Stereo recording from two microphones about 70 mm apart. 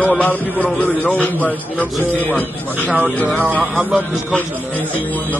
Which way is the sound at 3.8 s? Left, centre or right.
Right.